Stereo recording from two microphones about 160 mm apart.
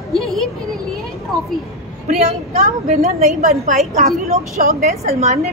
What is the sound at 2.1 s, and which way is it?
A woman's voice, 45° right (ahead or behind).